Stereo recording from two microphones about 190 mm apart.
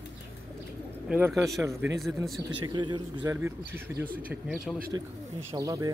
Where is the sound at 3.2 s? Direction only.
10° right (ahead or behind).